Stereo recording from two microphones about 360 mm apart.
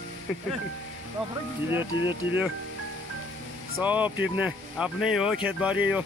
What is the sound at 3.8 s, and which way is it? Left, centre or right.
Speech, centre.